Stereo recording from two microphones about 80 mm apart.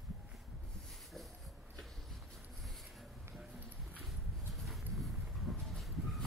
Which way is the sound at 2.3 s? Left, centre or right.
Centre.